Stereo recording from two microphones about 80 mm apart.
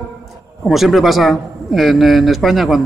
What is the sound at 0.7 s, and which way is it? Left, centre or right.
Speech, centre.